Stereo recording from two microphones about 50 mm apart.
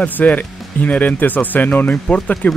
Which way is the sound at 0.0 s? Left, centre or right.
Left.